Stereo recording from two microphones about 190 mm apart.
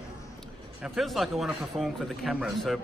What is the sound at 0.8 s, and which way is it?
A man's voice, centre (ahead or behind).